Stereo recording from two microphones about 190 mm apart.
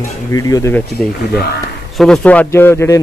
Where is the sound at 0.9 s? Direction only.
Centre (ahead or behind).